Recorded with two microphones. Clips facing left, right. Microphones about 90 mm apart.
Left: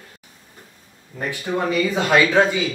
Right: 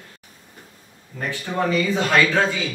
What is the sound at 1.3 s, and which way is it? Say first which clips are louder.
Speech: even; 15° left (ahead or behind).